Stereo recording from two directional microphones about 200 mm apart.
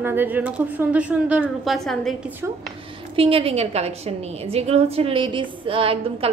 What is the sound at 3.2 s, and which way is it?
A woman's voice, 30° right (ahead or behind).